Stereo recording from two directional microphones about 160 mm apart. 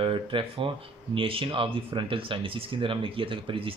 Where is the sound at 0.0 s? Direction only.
30° right (ahead or behind).